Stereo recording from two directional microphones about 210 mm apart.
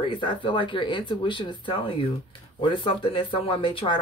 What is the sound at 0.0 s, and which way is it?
Speech, 25° left (ahead or behind).